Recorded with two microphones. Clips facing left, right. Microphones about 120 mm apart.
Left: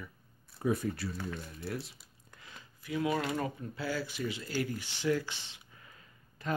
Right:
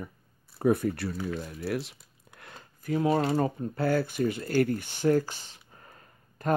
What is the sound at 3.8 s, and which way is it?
Speech, 55° right (ahead or behind).